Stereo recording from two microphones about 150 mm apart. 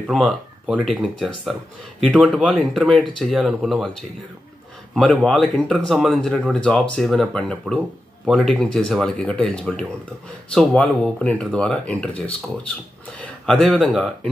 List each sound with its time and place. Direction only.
0.1 s speech: centre (ahead or behind)
4.9 s speech: 5° left (ahead or behind)
13.2 s speech: centre (ahead or behind)